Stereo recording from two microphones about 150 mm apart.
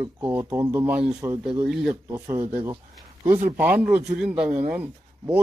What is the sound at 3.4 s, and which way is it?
Speech, 10° right (ahead or behind).